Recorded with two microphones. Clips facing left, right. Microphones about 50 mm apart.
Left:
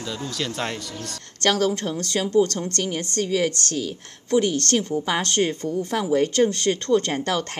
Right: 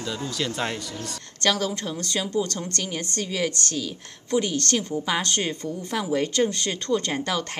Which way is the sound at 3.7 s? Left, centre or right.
Left.